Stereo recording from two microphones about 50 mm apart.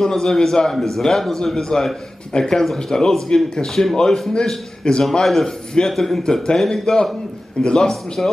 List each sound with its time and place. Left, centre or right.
0.0 s a man's voice: centre
5.2 s a man's voice: centre